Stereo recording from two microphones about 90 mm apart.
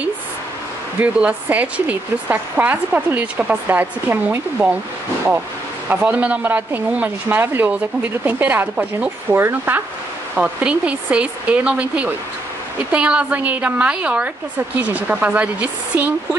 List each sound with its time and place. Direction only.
1.0 s speech: 15° right (ahead or behind)
5.9 s speech: 20° right (ahead or behind)
10.3 s speech: 10° right (ahead or behind)